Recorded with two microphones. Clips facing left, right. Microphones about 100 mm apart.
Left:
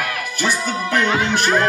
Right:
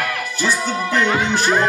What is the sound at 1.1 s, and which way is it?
Music, 15° right (ahead or behind).